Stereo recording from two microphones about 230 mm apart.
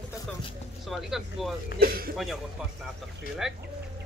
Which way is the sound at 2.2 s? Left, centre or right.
Centre.